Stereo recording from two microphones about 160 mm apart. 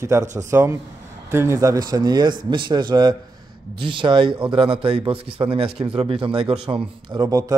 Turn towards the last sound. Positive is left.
turn(degrees=-20)  # may be behind; listen again after turning